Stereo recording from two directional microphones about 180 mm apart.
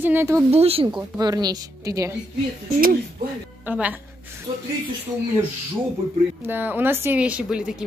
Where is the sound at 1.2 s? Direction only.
20° right (ahead or behind).